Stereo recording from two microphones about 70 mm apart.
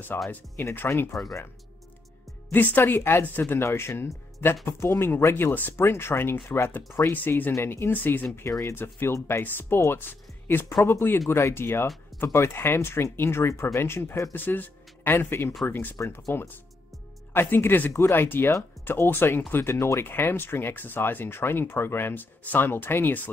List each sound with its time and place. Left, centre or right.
0.1 s speech: left
2.5 s speech: left
3.6 s speech: left
8.4 s speech: left
8.7 s speech: left
14.3 s speech: left